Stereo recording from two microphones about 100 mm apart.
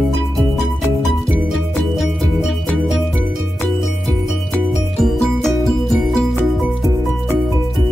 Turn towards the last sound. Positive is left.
turn(degrees=0)  # may be behind; listen again after turning